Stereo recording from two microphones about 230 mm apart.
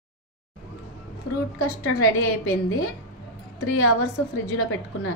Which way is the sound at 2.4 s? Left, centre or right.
Left.